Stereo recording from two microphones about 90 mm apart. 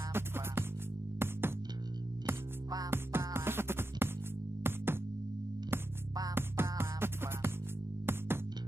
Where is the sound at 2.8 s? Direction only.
25° right (ahead or behind).